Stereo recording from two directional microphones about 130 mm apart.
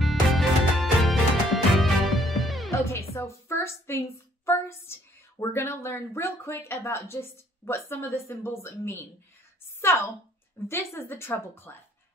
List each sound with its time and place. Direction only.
0.0 s music: centre (ahead or behind)
2.7 s music: 20° left (ahead or behind)
4.5 s a woman's voice: 20° left (ahead or behind)